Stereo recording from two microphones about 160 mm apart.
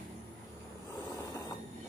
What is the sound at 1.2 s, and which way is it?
Train, 20° left (ahead or behind).